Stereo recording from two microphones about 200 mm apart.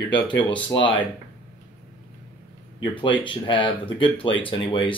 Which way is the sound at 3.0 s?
25° left (ahead or behind).